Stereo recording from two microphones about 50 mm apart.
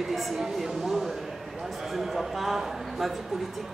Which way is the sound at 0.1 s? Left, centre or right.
Centre.